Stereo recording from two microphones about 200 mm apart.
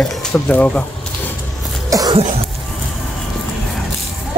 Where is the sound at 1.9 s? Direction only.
20° right (ahead or behind).